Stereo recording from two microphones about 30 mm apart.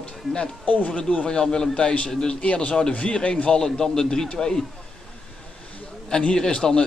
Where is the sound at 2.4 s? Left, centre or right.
Left.